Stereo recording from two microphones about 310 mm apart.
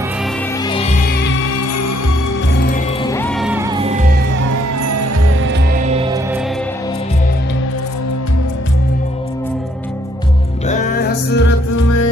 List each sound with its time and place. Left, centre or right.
2.7 s music: centre
3.3 s music: centre
4.7 s music: right
5.9 s music: centre
10.7 s music: left